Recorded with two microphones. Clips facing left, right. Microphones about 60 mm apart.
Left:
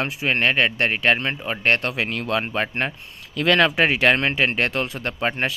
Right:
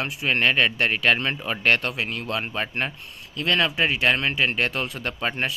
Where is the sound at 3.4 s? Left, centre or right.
Left.